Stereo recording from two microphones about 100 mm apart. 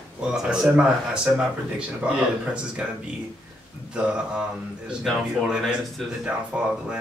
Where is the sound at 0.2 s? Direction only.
10° right (ahead or behind).